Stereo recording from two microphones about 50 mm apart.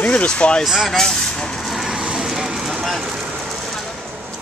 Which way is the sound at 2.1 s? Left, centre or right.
Centre.